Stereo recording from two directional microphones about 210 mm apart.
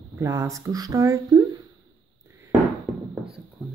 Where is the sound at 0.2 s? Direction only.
15° right (ahead or behind).